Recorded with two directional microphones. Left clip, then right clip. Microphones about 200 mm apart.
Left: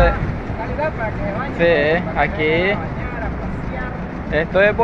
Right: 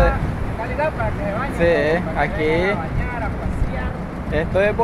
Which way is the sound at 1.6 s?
25° right (ahead or behind).